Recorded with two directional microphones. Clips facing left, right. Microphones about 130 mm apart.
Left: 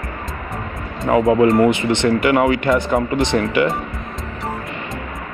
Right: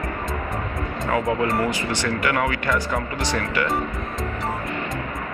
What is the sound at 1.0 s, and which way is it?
Speech, 25° left (ahead or behind).